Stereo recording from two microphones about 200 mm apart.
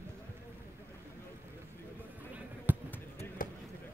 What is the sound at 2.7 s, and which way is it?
Basketball bounce, 10° right (ahead or behind).